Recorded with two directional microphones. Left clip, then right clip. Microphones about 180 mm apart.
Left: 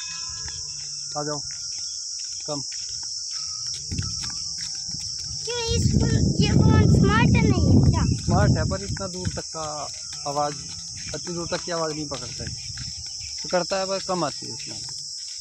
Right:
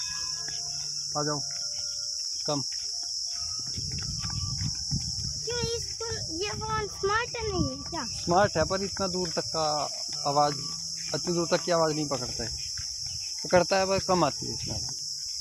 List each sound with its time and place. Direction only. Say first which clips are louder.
1.1 s cricket: left 1 dB; 25° right (ahead or behind)
5.5 s a sound: left 6 dB; 10° left (ahead or behind)
6.3 s speech: left 7 dB; 5° right (ahead or behind)
7.0 s a sound: left 6 dB; 10° left (ahead or behind)
8.3 s cricket: right 2 dB; 45° right (ahead or behind)
13.5 s cricket: right 1 dB; 25° right (ahead or behind)